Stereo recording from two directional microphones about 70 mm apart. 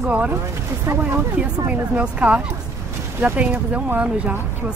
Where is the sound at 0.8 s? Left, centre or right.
Right.